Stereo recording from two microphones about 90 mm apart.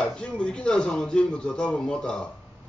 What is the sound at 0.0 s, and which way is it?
Speech, 10° left (ahead or behind).